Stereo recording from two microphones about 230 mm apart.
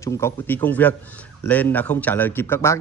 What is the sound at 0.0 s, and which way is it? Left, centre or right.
A man's voice, centre.